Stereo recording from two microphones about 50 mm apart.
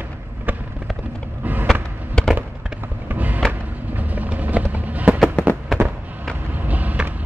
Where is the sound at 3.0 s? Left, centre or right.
Right.